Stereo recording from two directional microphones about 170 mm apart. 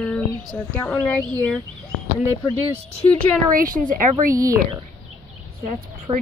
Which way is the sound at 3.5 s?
55° right (ahead or behind).